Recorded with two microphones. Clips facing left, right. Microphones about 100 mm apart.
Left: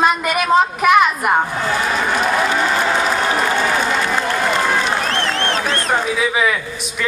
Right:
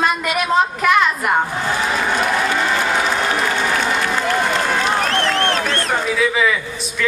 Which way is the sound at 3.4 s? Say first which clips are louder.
Left 2 dB; 20° left (ahead or behind).